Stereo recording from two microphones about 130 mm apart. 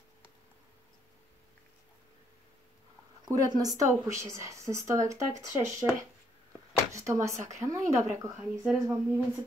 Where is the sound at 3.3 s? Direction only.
30° right (ahead or behind).